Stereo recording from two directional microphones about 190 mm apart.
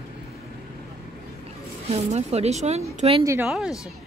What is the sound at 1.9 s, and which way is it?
A woman's voice, 35° right (ahead or behind).